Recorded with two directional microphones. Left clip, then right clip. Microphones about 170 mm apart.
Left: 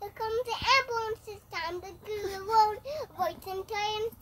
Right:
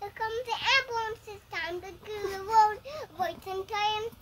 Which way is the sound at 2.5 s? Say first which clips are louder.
Right 1 dB; centre (ahead or behind).